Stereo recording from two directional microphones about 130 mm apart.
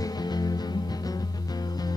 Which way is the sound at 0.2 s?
30° left (ahead or behind).